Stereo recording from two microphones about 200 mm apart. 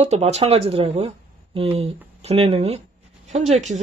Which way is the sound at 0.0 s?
30° right (ahead or behind).